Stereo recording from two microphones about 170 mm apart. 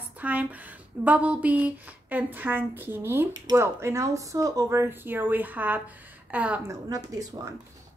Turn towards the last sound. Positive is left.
turn(degrees=-20)  # may be behind; listen again after turning